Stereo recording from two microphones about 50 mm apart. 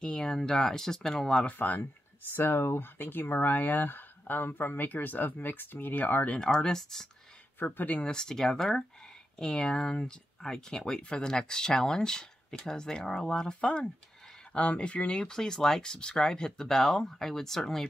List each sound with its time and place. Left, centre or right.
0.0 s speech: centre
1.5 s speech: left
2.3 s speech: left
3.0 s speech: left
6.4 s speech: centre
7.5 s speech: left
8.0 s speech: centre